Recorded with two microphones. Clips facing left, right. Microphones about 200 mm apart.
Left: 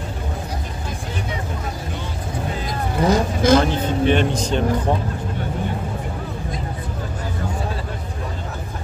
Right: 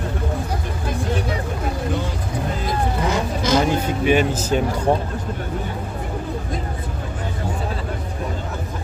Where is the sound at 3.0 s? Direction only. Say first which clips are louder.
Left 8 dB; 30° left (ahead or behind).